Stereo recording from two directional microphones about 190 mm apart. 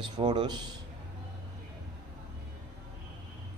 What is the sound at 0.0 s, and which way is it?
Speech, 25° right (ahead or behind).